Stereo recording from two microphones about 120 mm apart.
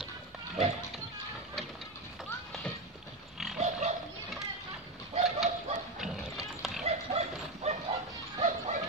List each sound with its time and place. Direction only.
3.5 s pig: 80° right
5.1 s chicken: 60° right (ahead or behind)
5.9 s horse: centre (ahead or behind)
6.8 s bow-wow: 65° right (ahead or behind)